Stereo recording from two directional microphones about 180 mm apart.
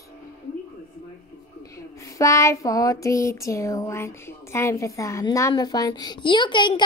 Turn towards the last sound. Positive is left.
turn(degrees=25)  # may be behind; listen again after turning